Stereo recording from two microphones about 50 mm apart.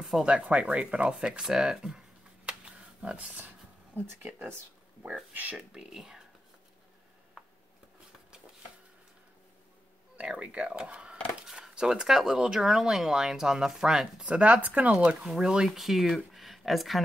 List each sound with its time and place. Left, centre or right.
0.4 s speech: right
1.1 s computer keyboard: centre
3.3 s a sound: right
5.0 s speech: right
5.7 s speech: centre
10.2 s speech: right
11.4 s a sound: centre
12.3 s speech: centre
14.2 s speech: right; by 16.2 s centre
16.3 s a sound: centre